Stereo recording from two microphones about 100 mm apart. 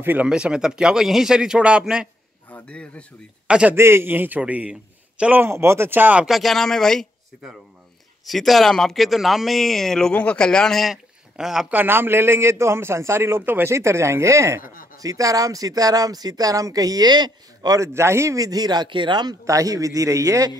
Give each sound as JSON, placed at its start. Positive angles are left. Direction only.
{"t": 0.0, "sound": "speech", "side_deg": -15}
{"t": 2.5, "sound": "a man's voice", "side_deg": 10}
{"t": 3.4, "sound": "a man's voice", "side_deg": -10}
{"t": 3.7, "sound": "speech", "side_deg": -25}
{"t": 5.4, "sound": "a man's voice", "side_deg": -25}
{"t": 6.2, "sound": "speech", "side_deg": 0}
{"t": 11.7, "sound": "a man's voice", "side_deg": -20}
{"t": 17.7, "sound": "speech", "side_deg": -30}
{"t": 19.4, "sound": "speech", "side_deg": -35}